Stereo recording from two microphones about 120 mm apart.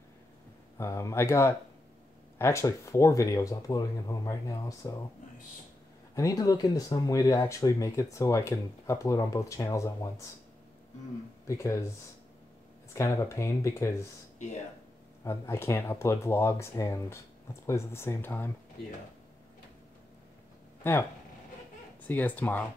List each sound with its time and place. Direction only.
0.7 s speech: 25° left (ahead or behind)
6.1 s speech: 30° left (ahead or behind)
11.4 s speech: 25° left (ahead or behind)
12.9 s speech: 25° left (ahead or behind)
15.2 s speech: 20° left (ahead or behind)
20.8 s speech: 20° left (ahead or behind)
22.0 s speech: 15° left (ahead or behind)